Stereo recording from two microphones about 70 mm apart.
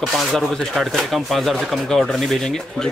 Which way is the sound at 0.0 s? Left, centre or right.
Centre.